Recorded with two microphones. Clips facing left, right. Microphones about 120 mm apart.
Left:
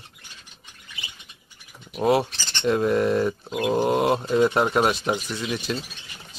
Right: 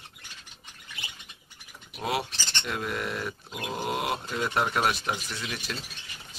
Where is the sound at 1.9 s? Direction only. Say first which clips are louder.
Left 10 dB; 35° left (ahead or behind).